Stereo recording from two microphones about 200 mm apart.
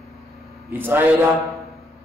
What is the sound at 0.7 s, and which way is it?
Speech, 10° right (ahead or behind).